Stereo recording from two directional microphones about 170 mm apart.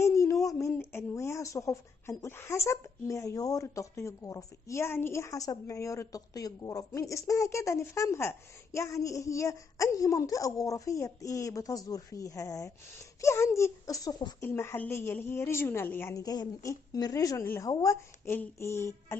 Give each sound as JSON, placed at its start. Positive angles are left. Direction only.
{"t": 0.0, "sound": "speech", "side_deg": 15}